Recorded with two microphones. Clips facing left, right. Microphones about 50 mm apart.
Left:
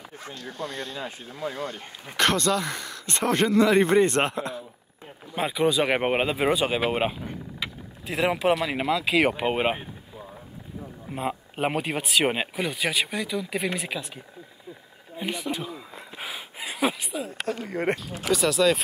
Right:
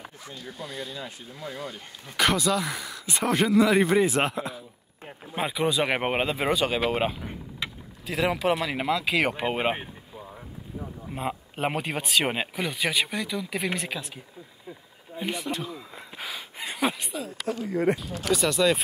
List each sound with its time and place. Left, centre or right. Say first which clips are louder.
0.4 s speech: left 4 dB; centre
0.9 s speech: left 3 dB; left
1.5 s speech: left 1 dB; left
2.1 s speech: left 1 dB; centre
8.3 s speech: left 3 dB; left
8.5 s speech: left 1 dB; centre
11.1 s speech: left 2 dB; centre
16.2 s a sound: even; centre
17.3 s speech: right 1 dB; left
18.3 s speech: left 1 dB; centre